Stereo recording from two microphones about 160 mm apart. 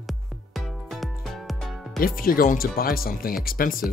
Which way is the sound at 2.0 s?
65° left (ahead or behind).